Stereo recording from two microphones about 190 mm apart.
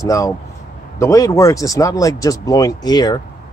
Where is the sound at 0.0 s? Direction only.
20° left (ahead or behind).